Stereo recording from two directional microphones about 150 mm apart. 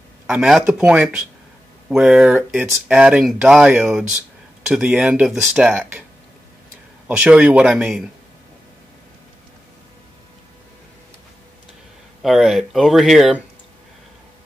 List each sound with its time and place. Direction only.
0.3 s speech: 5° right (ahead or behind)
7.1 s speech: 5° right (ahead or behind)
12.2 s speech: centre (ahead or behind)